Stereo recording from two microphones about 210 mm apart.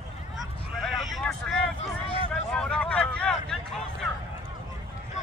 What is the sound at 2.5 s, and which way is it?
Vehicle, 5° left (ahead or behind).